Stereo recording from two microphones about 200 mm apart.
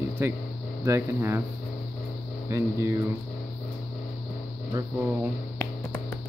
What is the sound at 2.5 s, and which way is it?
Speech, 15° right (ahead or behind).